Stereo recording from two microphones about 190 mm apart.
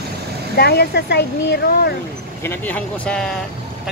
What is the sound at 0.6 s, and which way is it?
Speech, 60° left (ahead or behind).